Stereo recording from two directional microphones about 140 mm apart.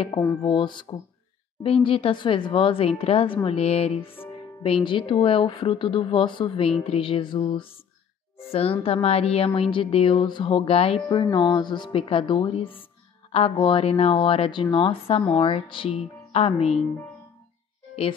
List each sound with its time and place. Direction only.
0.2 s speech: 20° left (ahead or behind)
0.5 s speech: 35° left (ahead or behind)
11.1 s speech: 30° left (ahead or behind); by 16.7 s 45° left (ahead or behind)